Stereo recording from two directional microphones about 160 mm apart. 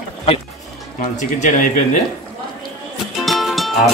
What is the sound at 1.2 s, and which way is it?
Speech, 50° left (ahead or behind).